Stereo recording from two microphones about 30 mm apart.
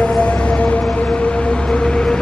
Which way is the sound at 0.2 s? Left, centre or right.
Left.